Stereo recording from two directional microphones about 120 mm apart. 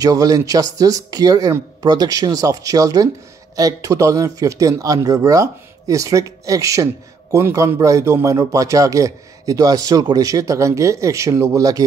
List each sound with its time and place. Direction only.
0.0 s speech: 30° right (ahead or behind)